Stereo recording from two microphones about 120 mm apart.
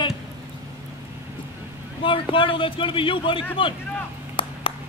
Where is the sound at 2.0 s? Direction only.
45° left (ahead or behind).